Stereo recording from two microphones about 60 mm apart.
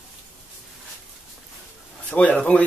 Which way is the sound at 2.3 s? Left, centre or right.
Centre.